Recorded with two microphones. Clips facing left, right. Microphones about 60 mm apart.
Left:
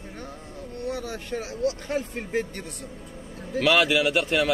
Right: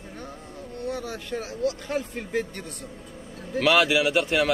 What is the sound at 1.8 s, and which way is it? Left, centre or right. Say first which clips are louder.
Speech: even; left.